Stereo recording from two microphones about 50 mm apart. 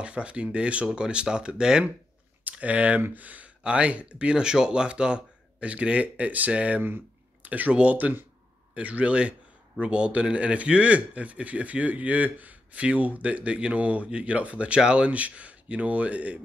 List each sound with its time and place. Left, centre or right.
0.0 s a man's voice: right
2.5 s a man's voice: right